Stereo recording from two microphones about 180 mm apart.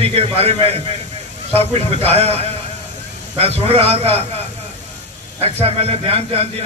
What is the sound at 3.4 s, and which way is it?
A man's voice, 35° right (ahead or behind).